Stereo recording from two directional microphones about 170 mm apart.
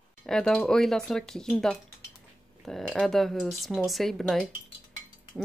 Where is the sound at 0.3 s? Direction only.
Centre (ahead or behind).